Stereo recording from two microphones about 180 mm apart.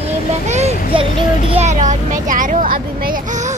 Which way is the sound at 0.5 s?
35° right (ahead or behind).